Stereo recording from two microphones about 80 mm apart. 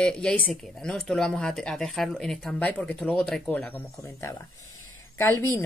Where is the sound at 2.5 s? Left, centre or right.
Centre.